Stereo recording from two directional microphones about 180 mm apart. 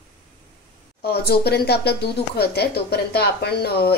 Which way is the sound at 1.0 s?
60° left (ahead or behind).